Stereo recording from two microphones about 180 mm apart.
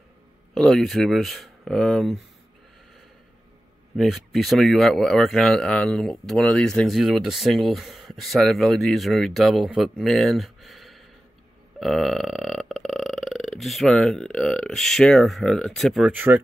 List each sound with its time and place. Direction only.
0.6 s speech: centre (ahead or behind)
3.9 s speech: centre (ahead or behind)